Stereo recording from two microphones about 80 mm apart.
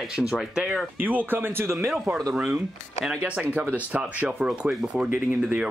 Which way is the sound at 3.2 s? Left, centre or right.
Centre.